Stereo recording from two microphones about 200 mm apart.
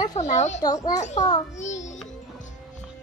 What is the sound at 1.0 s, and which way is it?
A woman's voice, 35° left (ahead or behind).